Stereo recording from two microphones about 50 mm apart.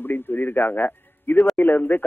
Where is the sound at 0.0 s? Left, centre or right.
Left.